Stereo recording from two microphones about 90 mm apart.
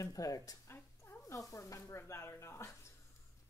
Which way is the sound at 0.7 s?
30° left (ahead or behind).